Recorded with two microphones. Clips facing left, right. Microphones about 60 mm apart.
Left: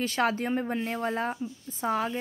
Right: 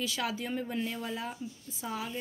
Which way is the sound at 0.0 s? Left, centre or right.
Left.